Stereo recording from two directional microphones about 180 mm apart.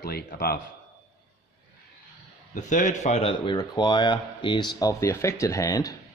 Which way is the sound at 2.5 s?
45° left (ahead or behind).